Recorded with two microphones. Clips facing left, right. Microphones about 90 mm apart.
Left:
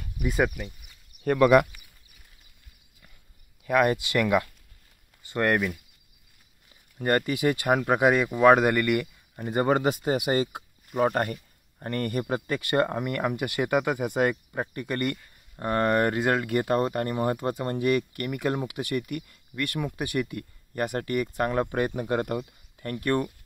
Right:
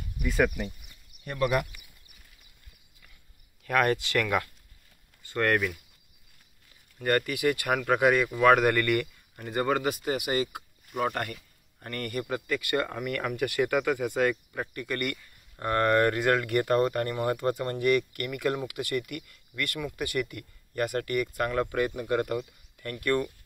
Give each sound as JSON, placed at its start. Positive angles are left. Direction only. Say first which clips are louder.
{"t": 0.2, "sound": "a sound", "louder": "left 3 dB", "side_deg": 0}
{"t": 3.6, "sound": "speech", "louder": "left 3 dB", "side_deg": 10}
{"t": 7.0, "sound": "speech", "louder": "left 2 dB", "side_deg": 25}
{"t": 9.4, "sound": "speech", "louder": "left 4 dB", "side_deg": 25}